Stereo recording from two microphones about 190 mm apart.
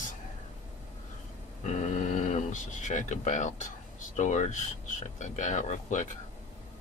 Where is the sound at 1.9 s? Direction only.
40° left (ahead or behind).